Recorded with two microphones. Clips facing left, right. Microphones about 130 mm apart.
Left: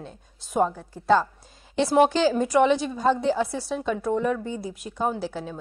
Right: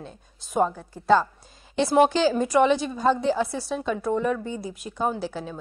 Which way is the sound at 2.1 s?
Centre (ahead or behind).